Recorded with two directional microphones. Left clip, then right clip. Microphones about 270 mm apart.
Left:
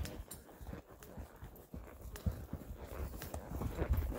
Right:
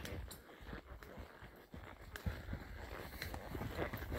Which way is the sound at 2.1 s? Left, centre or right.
Right.